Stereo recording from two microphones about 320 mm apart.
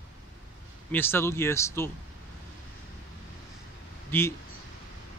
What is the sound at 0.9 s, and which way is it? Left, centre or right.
Speech, centre.